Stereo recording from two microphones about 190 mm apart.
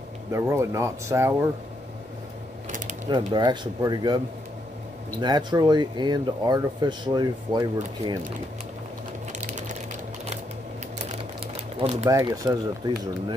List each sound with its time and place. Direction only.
0.3 s speech: 15° right (ahead or behind)
3.1 s speech: 25° right (ahead or behind)
5.2 s speech: 20° right (ahead or behind)
9.3 s sewing machine: 40° right (ahead or behind)
11.8 s speech: 35° right (ahead or behind)
12.1 s speech: 20° right (ahead or behind)